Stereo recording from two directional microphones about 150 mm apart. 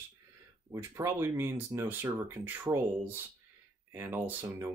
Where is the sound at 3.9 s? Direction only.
15° right (ahead or behind).